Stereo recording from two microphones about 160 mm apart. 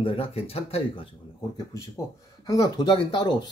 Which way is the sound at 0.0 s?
35° left (ahead or behind).